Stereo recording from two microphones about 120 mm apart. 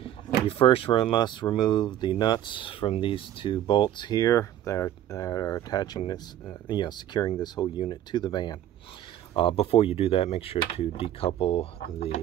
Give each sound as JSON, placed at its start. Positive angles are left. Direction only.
{"t": 0.0, "sound": "speech", "side_deg": 50}
{"t": 9.3, "sound": "speech", "side_deg": 45}